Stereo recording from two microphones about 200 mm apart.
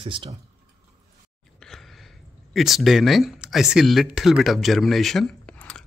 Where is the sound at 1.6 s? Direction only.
Centre (ahead or behind).